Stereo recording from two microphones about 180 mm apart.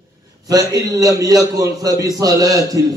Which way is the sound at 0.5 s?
20° right (ahead or behind).